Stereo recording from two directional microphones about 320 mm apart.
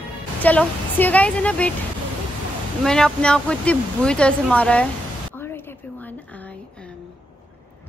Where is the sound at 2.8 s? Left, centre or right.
Centre.